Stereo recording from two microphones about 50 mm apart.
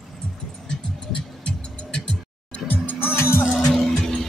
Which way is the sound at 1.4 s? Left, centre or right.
Left.